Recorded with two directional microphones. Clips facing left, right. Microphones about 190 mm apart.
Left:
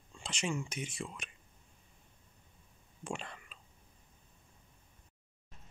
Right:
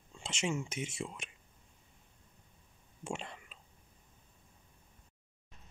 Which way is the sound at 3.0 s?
20° right (ahead or behind).